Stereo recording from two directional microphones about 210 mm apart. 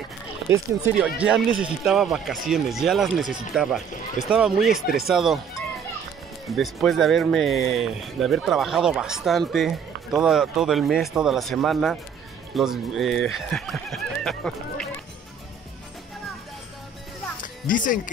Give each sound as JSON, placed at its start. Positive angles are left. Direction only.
{"t": 0.5, "sound": "speech", "side_deg": -5}
{"t": 6.5, "sound": "speech", "side_deg": 0}
{"t": 17.6, "sound": "speech", "side_deg": 40}